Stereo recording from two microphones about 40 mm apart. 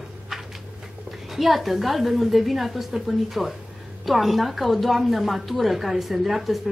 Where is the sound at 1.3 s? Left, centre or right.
Centre.